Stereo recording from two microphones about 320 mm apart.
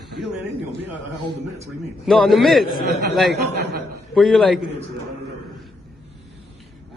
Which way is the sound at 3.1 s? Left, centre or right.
Centre.